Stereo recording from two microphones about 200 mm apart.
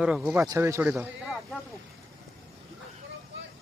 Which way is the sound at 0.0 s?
5° right (ahead or behind).